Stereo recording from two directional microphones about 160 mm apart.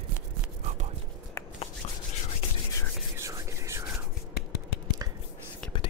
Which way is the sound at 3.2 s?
20° right (ahead or behind).